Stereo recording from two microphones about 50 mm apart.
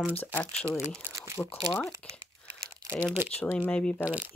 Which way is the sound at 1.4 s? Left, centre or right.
Left.